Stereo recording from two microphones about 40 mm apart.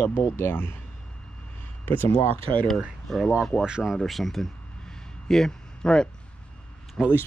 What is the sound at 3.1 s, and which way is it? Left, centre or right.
Speech, centre.